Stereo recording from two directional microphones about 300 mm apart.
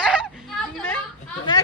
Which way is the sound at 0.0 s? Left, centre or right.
Centre.